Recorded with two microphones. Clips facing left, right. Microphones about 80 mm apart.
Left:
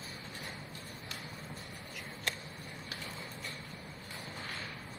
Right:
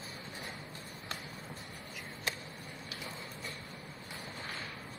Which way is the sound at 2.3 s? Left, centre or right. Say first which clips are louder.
Even; centre.